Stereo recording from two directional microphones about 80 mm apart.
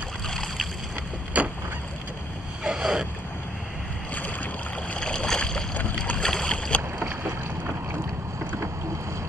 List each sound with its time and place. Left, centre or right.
0.3 s boat: centre
1.3 s boat: centre
2.6 s boat: centre
4.1 s boat: centre